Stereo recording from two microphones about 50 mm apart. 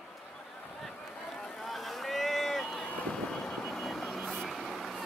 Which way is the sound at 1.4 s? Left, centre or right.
Centre.